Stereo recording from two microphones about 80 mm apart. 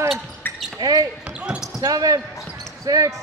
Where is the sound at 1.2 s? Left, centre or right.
Centre.